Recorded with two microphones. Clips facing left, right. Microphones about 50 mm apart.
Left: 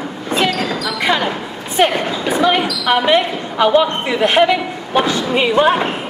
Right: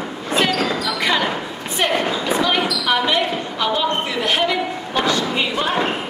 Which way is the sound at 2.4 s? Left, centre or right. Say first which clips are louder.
Left 7 dB; left.